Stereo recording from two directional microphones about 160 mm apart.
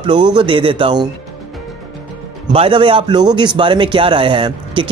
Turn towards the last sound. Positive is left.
turn(degrees=-35)  # may be behind; listen again after turning